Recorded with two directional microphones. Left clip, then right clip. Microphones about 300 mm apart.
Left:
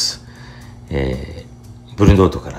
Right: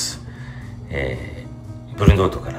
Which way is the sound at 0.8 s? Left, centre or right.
Centre.